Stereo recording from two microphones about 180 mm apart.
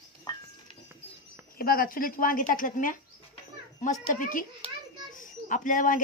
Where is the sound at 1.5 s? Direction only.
55° left (ahead or behind).